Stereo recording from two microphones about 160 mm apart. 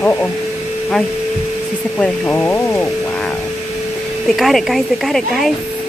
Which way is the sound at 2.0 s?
5° left (ahead or behind).